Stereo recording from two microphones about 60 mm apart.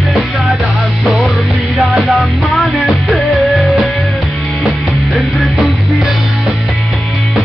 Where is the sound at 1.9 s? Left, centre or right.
Centre.